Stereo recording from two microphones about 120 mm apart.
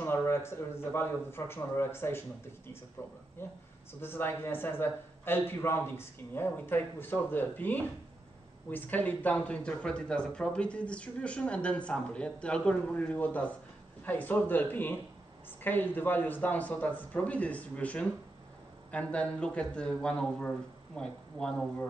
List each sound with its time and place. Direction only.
0.0 s a man's voice: 20° left (ahead or behind)